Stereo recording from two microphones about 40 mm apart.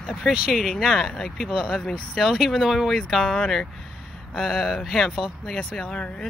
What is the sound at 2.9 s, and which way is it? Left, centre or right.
Speech, centre.